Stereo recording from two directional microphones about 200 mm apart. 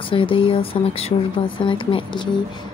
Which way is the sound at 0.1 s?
25° left (ahead or behind).